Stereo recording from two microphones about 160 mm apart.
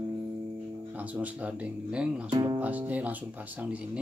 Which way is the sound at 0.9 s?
10° right (ahead or behind).